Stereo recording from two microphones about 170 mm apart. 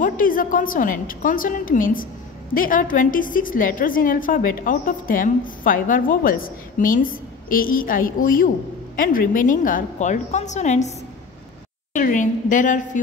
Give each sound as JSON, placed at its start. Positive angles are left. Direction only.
{"t": 0.0, "sound": "a woman's voice", "side_deg": 55}
{"t": 11.9, "sound": "a woman's voice", "side_deg": 50}